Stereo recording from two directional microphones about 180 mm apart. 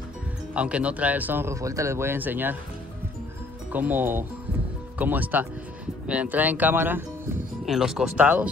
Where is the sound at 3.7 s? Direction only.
10° right (ahead or behind).